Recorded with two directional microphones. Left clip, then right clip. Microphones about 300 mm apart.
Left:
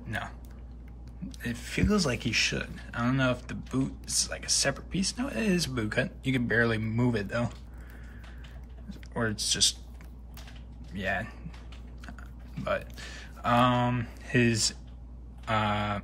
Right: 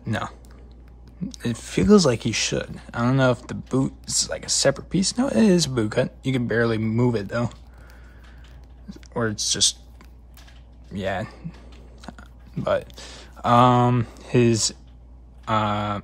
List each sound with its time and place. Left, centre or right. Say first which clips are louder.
0.0 s a sound: right 7 dB; centre
1.3 s speech: right 7 dB; centre
8.8 s speech: right 6 dB; centre
11.0 s speech: right 4 dB; centre